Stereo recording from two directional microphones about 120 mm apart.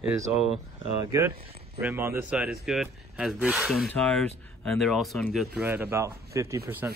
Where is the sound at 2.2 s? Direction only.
5° right (ahead or behind).